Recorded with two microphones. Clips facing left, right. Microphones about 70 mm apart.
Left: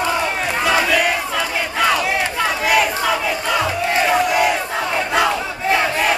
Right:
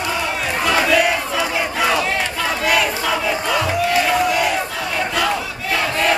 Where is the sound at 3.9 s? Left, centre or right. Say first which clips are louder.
Left 3 dB; left.